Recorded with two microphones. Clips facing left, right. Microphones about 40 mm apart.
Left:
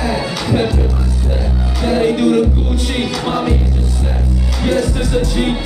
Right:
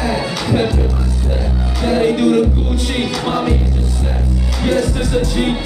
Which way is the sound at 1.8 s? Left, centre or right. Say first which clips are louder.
Even; centre.